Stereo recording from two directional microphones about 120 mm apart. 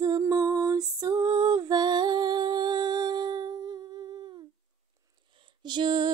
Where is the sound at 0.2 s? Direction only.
30° right (ahead or behind).